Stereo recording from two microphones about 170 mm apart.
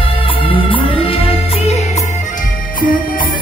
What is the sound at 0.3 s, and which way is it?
Music, 30° left (ahead or behind).